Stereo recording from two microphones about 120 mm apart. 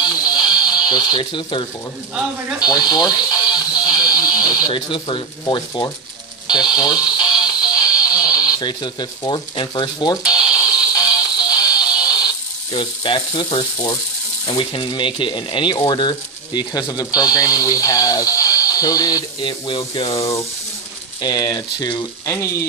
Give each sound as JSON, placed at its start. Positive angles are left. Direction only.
{"t": 0.0, "sound": "a sound", "side_deg": 35}
{"t": 2.6, "sound": "music", "side_deg": 35}
{"t": 6.4, "sound": "music", "side_deg": 35}
{"t": 10.2, "sound": "a sound", "side_deg": -5}
{"t": 10.5, "sound": "music", "side_deg": 30}
{"t": 12.7, "sound": "speech", "side_deg": 40}
{"t": 14.6, "sound": "speech", "side_deg": 45}
{"t": 20.0, "sound": "speech", "side_deg": 50}
{"t": 21.2, "sound": "speech", "side_deg": 35}
{"t": 22.2, "sound": "speech", "side_deg": 25}